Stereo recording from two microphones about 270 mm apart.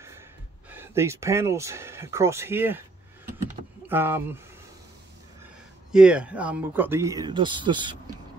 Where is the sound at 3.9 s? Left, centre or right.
Centre.